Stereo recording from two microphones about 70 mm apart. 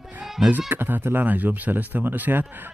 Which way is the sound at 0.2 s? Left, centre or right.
Centre.